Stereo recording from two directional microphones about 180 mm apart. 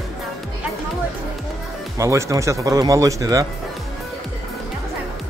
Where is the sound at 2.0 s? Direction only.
15° right (ahead or behind).